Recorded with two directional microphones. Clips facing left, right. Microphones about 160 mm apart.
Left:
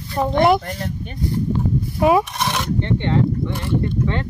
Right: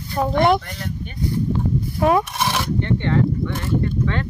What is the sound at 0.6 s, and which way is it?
Speech, 45° left (ahead or behind).